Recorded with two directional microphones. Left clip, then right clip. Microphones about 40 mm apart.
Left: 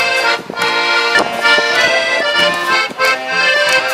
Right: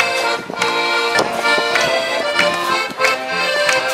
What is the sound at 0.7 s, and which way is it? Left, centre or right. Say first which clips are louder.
Music: left 4 dB; left.